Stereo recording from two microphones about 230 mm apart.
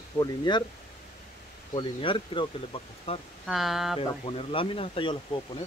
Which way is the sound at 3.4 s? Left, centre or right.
Centre.